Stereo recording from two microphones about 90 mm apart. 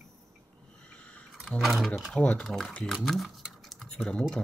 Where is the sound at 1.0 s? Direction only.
10° left (ahead or behind).